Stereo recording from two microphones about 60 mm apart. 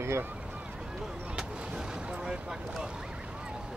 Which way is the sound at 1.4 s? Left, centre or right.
Centre.